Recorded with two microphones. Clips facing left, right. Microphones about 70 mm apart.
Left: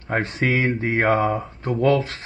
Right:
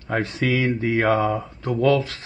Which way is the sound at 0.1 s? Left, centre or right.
Left.